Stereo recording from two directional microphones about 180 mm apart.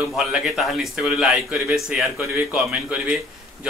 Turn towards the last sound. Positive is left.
turn(degrees=-5)  # may be behind; listen again after turning